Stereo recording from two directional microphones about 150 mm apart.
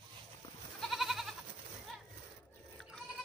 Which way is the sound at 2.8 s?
Centre (ahead or behind).